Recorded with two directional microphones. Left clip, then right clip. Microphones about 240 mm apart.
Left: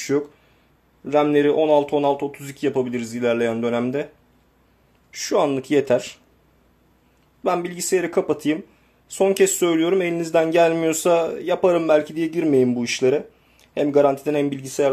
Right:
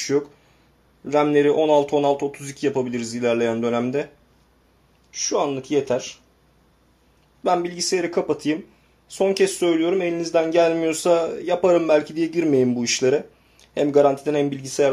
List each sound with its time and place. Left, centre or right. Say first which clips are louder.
0.1 s speech: even; centre
5.1 s speech: left 2 dB; left
7.4 s speech: right 2 dB; centre